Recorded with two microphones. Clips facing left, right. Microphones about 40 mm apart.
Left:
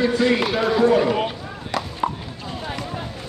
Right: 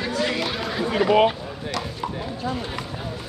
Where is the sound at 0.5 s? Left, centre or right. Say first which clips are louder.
Left 9 dB; centre.